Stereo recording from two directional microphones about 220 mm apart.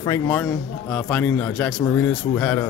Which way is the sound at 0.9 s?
5° left (ahead or behind).